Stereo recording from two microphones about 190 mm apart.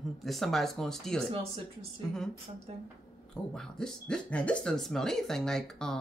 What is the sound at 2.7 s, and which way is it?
Speech, 30° right (ahead or behind).